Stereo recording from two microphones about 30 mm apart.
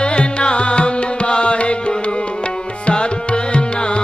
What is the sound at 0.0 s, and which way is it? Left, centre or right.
Music, left.